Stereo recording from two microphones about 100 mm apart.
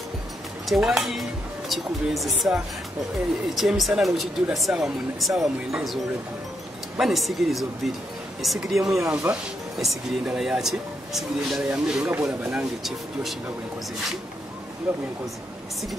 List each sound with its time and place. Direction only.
0.7 s speech: 5° right (ahead or behind)
7.0 s speech: centre (ahead or behind)
9.3 s speech: 20° right (ahead or behind)
9.8 s speech: 5° right (ahead or behind)